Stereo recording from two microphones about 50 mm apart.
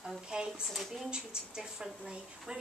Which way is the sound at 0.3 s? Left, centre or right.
Centre.